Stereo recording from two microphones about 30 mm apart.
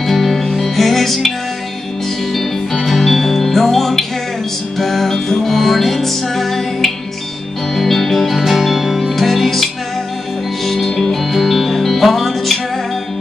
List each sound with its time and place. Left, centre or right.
0.0 s music: centre
3.0 s music: centre
5.1 s music: centre
5.5 s music: centre
9.1 s music: centre